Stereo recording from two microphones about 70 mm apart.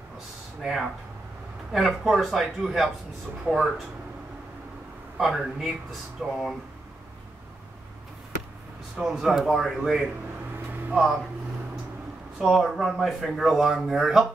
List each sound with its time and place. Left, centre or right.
0.6 s speech: centre
5.1 s speech: centre
8.9 s speech: centre
10.7 s a sound: right
12.4 s speech: centre